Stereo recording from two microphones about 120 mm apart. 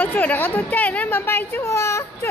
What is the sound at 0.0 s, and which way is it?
Speech, 15° left (ahead or behind).